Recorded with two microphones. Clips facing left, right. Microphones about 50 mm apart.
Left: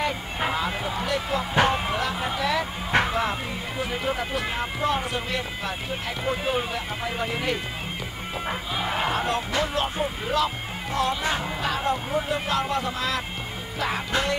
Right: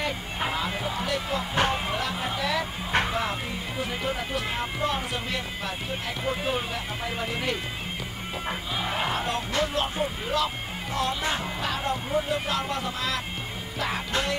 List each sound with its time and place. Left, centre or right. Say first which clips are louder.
0.0 s speech: left 3 dB; centre
1.7 s music: left 3 dB; centre
3.8 s speech: left 3 dB; centre
13.7 s music: left 2 dB; centre